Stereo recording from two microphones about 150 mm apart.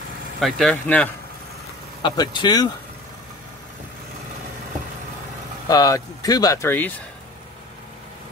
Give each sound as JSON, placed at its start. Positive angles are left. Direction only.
{"t": 0.4, "sound": "speech", "side_deg": 5}
{"t": 2.0, "sound": "speech", "side_deg": 30}
{"t": 5.7, "sound": "speech", "side_deg": 20}